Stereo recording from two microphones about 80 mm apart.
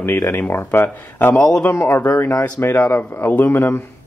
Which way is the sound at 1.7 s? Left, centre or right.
Left.